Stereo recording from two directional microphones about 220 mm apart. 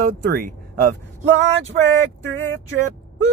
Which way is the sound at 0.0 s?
45° right (ahead or behind).